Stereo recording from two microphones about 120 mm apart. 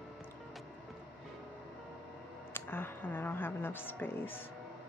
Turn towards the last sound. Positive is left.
turn(degrees=20)  # may be behind; listen again after turning